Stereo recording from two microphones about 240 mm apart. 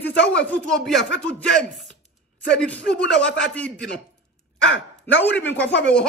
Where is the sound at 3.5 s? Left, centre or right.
Centre.